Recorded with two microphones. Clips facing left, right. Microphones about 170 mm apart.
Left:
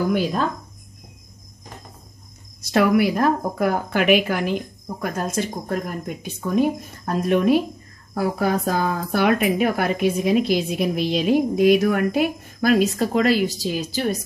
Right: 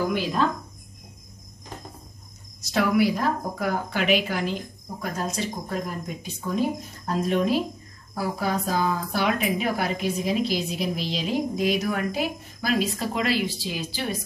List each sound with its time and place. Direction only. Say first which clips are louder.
2.6 s speech: left 4 dB; 60° left (ahead or behind); by 14.2 s 40° left (ahead or behind)